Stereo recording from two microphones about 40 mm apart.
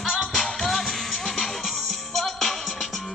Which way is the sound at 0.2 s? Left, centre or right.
Centre.